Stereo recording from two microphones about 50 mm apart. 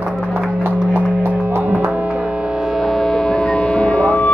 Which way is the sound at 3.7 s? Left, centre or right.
Left.